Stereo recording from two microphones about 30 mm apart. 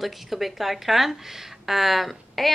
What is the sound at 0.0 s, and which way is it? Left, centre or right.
Speech, centre.